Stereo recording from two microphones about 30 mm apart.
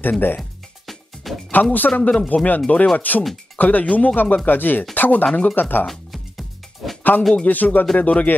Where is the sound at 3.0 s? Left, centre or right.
Left.